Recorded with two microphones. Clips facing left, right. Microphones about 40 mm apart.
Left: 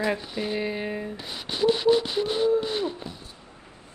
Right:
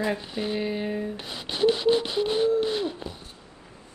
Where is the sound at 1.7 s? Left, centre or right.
Left.